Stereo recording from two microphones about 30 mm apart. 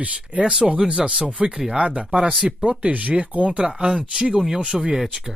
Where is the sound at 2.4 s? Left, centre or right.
Right.